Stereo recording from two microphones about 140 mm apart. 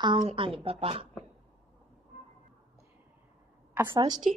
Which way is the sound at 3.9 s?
30° right (ahead or behind).